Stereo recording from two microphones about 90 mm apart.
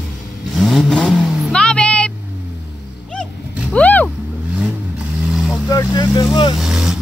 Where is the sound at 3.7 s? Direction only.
15° left (ahead or behind).